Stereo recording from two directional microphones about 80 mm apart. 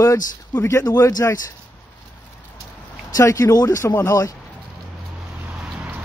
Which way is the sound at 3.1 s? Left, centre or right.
Left.